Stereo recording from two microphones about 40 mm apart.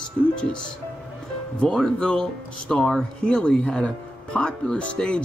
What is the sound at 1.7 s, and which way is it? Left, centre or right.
Speech, centre.